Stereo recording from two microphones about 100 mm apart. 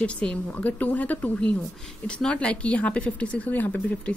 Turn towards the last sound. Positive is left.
turn(degrees=15)  # may be behind; listen again after turning